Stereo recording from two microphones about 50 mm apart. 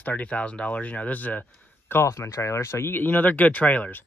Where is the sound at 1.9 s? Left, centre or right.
Left.